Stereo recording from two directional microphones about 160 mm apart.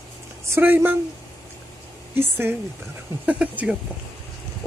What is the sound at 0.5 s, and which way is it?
Speech, 15° right (ahead or behind).